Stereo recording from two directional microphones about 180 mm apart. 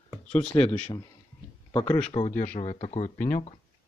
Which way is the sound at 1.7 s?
25° left (ahead or behind).